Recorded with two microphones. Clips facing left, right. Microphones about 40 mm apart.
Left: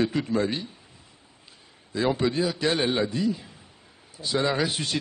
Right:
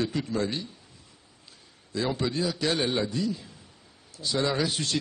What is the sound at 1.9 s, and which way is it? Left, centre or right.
A man's voice, centre.